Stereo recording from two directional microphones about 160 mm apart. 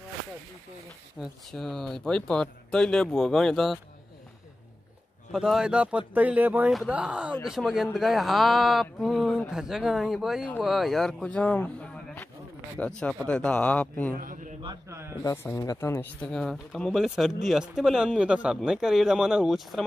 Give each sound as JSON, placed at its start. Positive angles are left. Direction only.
{"t": 1.2, "sound": "speech", "side_deg": 0}
{"t": 5.3, "sound": "speech", "side_deg": -5}
{"t": 14.1, "sound": "speech", "side_deg": -60}
{"t": 15.2, "sound": "speech", "side_deg": 15}